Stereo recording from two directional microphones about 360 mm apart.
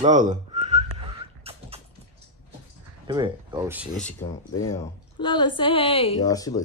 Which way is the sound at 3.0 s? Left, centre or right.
Centre.